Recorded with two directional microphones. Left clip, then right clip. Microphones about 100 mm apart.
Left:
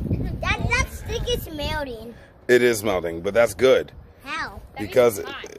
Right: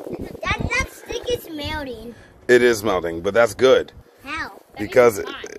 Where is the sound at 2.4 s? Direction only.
15° left (ahead or behind).